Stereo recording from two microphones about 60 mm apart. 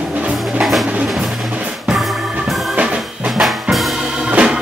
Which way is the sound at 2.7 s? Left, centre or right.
Centre.